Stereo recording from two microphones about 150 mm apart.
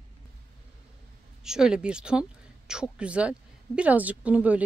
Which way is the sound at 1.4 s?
5° right (ahead or behind).